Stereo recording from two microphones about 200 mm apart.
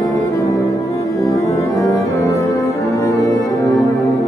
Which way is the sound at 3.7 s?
Centre (ahead or behind).